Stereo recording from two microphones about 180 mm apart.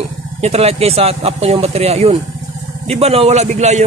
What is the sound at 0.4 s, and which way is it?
Speech, 35° right (ahead or behind).